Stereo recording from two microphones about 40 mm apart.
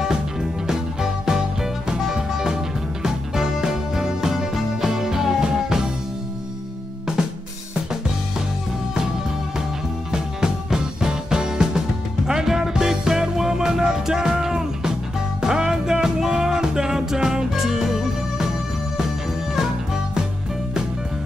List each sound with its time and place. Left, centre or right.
0.0 s music: centre
10.1 s music: centre
19.5 s music: centre